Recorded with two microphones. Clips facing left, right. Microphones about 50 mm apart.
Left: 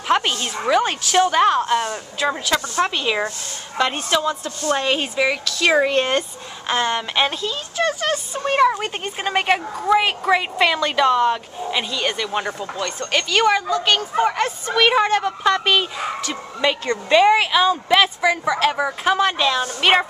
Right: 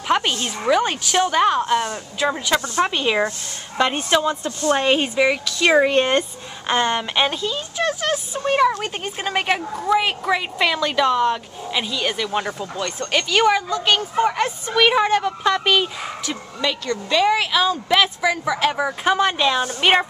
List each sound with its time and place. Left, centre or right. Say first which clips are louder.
0.4 s a woman's voice: even; centre
5.0 s a woman's voice: right 2 dB; centre
16.8 s a woman's voice: left 6 dB; left
17.2 s a woman's voice: left 2 dB; centre